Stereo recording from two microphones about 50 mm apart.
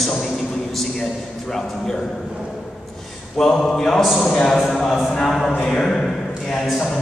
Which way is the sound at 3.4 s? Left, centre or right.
Centre.